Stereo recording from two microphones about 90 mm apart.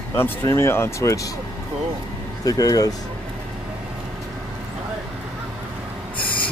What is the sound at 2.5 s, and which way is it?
Speech, 45° left (ahead or behind).